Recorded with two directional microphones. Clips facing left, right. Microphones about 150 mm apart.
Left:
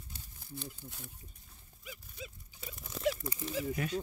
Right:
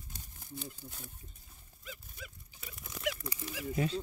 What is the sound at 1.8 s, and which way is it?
Dog, 20° left (ahead or behind).